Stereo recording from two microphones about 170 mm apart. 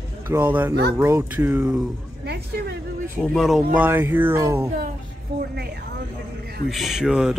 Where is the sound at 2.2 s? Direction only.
75° right (ahead or behind).